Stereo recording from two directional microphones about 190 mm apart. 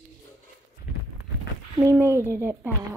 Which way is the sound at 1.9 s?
15° right (ahead or behind).